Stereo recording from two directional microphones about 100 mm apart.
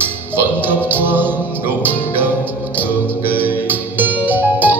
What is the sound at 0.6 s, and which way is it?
Music, 20° right (ahead or behind).